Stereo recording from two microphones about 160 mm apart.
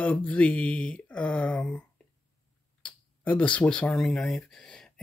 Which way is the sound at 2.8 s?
10° left (ahead or behind).